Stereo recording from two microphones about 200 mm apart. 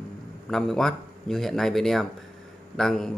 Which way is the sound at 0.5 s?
Centre (ahead or behind).